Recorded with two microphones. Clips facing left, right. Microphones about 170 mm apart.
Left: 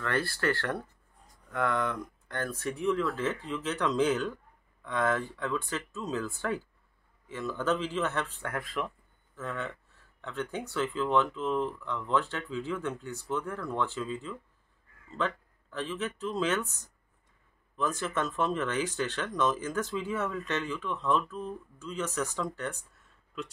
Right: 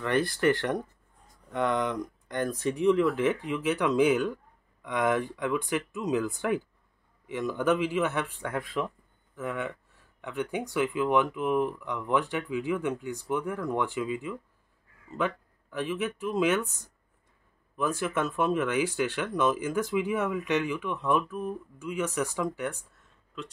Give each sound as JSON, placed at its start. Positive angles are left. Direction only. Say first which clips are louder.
{"t": 0.0, "sound": "speech", "louder": "right 5 dB", "side_deg": -20}